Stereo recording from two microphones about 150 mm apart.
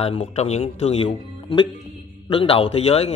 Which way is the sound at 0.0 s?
45° left (ahead or behind).